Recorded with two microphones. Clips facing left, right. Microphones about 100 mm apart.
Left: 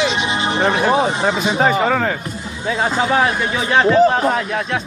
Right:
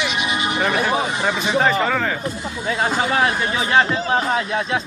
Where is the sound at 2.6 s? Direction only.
5° left (ahead or behind).